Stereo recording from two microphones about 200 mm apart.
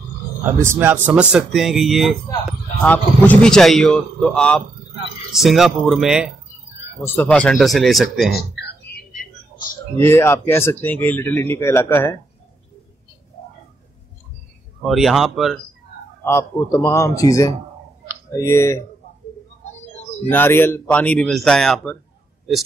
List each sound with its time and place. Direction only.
0.6 s speech: 10° right (ahead or behind)
8.3 s a sound: 55° left (ahead or behind)
9.9 s speech: 10° left (ahead or behind)
14.8 s speech: centre (ahead or behind)
16.3 s speech: 15° left (ahead or behind)
20.2 s speech: 10° left (ahead or behind)